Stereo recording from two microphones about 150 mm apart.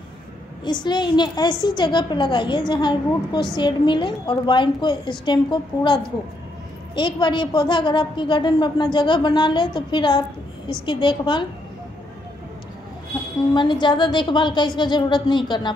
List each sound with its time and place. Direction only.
0.7 s a woman's voice: 30° left (ahead or behind)
7.0 s a woman's voice: 30° left (ahead or behind)
13.5 s a woman's voice: 30° left (ahead or behind)